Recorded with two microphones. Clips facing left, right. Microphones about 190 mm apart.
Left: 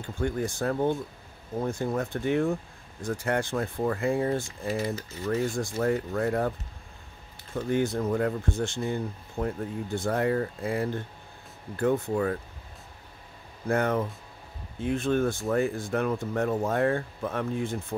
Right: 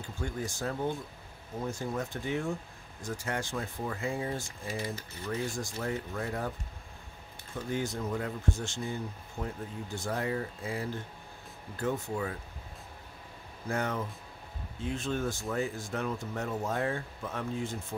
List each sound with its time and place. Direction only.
0.2 s speech: 55° left (ahead or behind)
7.7 s speech: 60° left (ahead or behind)
13.7 s speech: 55° left (ahead or behind)